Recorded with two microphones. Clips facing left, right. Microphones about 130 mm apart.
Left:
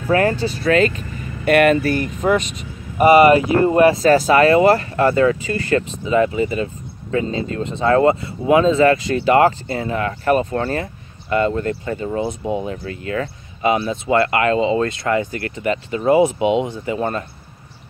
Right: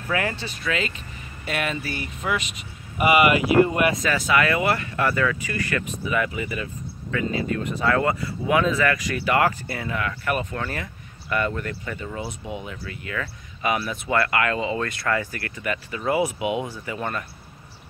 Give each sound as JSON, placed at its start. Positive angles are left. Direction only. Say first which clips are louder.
{"t": 0.1, "sound": "speech", "louder": "left 10 dB", "side_deg": 40}